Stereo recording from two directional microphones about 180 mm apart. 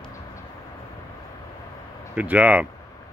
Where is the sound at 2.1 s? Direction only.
10° right (ahead or behind).